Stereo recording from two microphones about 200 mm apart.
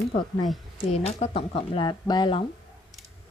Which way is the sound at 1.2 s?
30° left (ahead or behind).